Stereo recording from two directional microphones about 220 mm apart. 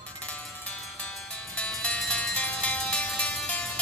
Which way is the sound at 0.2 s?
5° left (ahead or behind).